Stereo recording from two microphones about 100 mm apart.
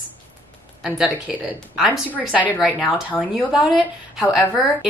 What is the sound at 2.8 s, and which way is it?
Speech, 15° left (ahead or behind).